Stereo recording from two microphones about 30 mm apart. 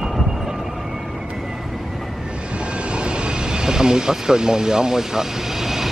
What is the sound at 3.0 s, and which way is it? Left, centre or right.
Vehicle, right.